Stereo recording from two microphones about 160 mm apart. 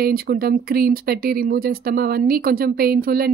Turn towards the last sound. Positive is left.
turn(degrees=-70)  # may be behind; listen again after turning